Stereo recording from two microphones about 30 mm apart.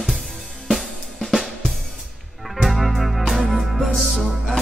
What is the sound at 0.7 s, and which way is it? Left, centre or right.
Drum kit, centre.